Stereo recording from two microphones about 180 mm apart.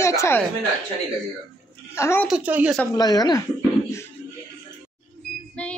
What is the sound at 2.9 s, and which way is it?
Speech, 20° left (ahead or behind).